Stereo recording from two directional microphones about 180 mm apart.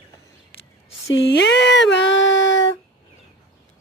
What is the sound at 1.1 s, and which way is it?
Speech, 75° left (ahead or behind).